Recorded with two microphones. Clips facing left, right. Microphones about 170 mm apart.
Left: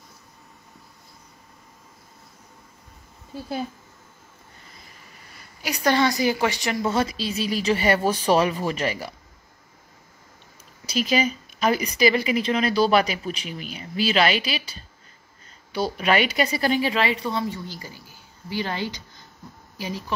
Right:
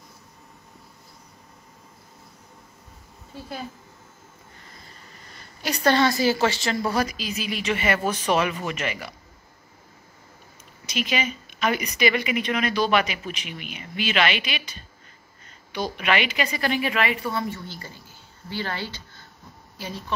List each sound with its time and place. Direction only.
5.6 s speech: 10° left (ahead or behind); by 9.1 s 35° left (ahead or behind)
10.9 s speech: 35° left (ahead or behind)
17.2 s speech: 15° left (ahead or behind)